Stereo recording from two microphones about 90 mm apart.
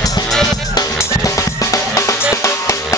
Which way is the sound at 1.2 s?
35° left (ahead or behind).